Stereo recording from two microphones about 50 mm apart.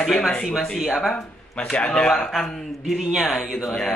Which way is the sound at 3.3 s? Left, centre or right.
Centre.